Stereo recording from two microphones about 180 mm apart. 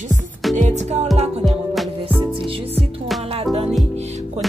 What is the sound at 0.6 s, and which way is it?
Music, 40° right (ahead or behind).